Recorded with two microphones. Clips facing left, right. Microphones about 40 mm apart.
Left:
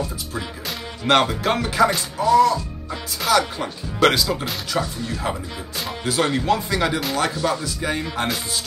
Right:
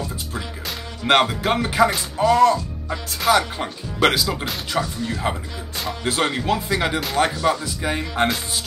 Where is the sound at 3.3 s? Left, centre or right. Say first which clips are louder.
Right 1 dB; right.